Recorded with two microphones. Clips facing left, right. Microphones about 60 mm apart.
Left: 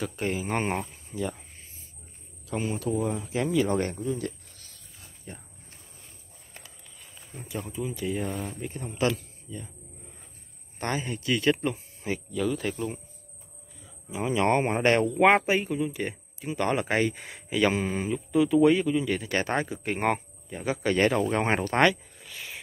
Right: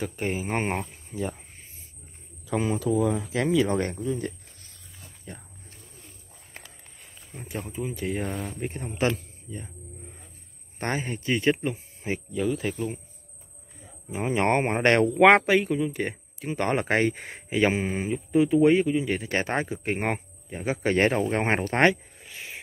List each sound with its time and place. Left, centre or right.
0.2 s speech: right
3.0 s speech: right
3.6 s speech: right
7.3 s speech: right
8.3 s speech: centre
8.5 s speech: right
10.8 s speech: right
12.5 s speech: centre
14.1 s speech: right
14.8 s speech: right
17.6 s speech: centre